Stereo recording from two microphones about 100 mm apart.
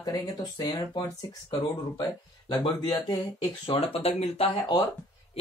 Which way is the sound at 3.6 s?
85° left.